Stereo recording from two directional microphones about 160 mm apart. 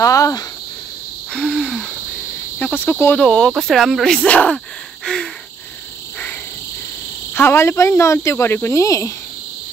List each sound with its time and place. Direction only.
0.0 s cricket: 20° left (ahead or behind)
1.3 s owl: 5° left (ahead or behind)
2.6 s speech: 10° left (ahead or behind)
5.0 s gasp: 5° left (ahead or behind)
7.3 s speech: 15° left (ahead or behind)